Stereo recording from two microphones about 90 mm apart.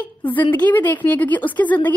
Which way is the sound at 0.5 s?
20° left (ahead or behind).